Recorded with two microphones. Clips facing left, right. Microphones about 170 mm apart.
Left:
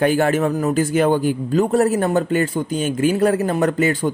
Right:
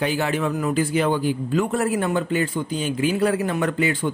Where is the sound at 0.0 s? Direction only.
50° left (ahead or behind).